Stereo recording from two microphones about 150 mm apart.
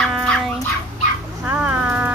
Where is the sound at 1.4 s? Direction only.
10° right (ahead or behind).